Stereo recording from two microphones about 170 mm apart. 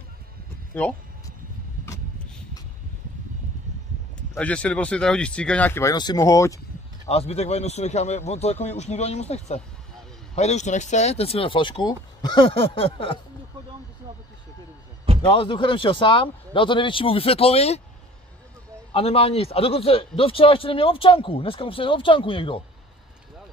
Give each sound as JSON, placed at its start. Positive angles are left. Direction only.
{"t": 0.8, "sound": "speech", "side_deg": 10}
{"t": 4.4, "sound": "speech", "side_deg": 10}
{"t": 7.1, "sound": "a man's voice", "side_deg": 35}
{"t": 15.2, "sound": "a man's voice", "side_deg": 30}
{"t": 18.9, "sound": "a man's voice", "side_deg": 35}